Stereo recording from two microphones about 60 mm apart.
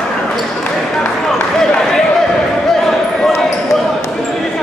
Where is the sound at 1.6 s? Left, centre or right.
Centre.